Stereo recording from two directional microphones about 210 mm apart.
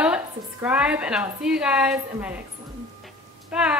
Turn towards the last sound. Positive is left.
turn(degrees=-5)  # may be behind; listen again after turning